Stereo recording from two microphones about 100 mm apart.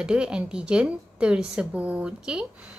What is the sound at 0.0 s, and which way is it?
A woman's voice, 10° right (ahead or behind).